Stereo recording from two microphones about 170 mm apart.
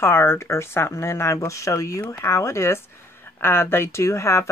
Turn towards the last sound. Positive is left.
turn(degrees=15)  # may be behind; listen again after turning